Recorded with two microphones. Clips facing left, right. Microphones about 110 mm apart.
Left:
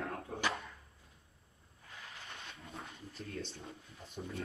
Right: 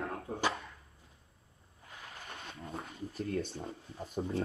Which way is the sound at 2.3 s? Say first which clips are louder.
Right 7 dB; 30° right (ahead or behind).